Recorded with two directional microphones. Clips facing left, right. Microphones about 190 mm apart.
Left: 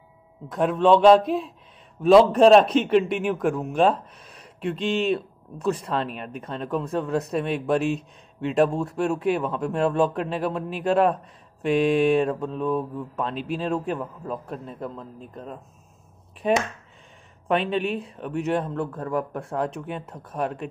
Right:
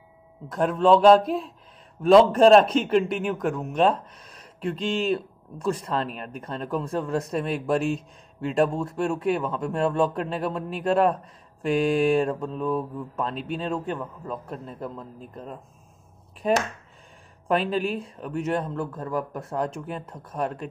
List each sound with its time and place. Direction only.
0.5 s a man's voice: centre (ahead or behind)
17.5 s a man's voice: centre (ahead or behind)